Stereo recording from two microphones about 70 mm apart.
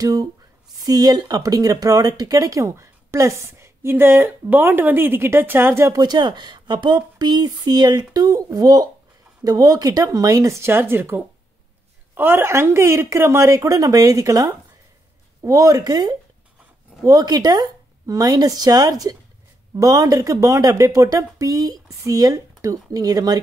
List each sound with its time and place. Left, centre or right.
0.0 s speech: right
5.9 s speech: right
17.0 s speech: right